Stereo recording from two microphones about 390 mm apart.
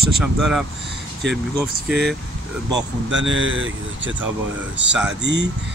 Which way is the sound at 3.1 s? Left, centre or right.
Right.